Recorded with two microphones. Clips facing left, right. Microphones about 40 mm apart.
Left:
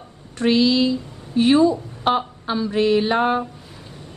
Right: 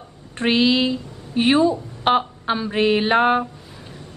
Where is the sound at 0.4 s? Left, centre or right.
Right.